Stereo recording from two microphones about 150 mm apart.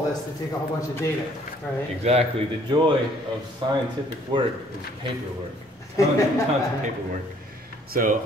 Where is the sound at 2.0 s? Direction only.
45° right (ahead or behind).